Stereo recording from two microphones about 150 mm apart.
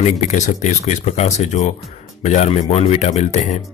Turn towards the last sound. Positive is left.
turn(degrees=50)  # may be behind; listen again after turning